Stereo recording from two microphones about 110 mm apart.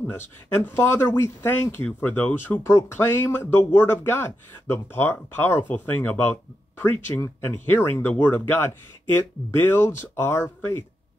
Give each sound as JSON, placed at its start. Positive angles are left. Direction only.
{"t": 0.0, "sound": "speech", "side_deg": 20}